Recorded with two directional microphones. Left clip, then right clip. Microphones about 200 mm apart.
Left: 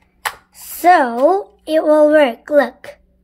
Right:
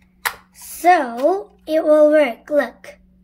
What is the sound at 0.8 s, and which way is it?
A child's voice, 25° left (ahead or behind).